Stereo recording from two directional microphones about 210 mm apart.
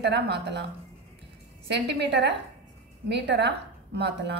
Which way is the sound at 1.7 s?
55° right (ahead or behind).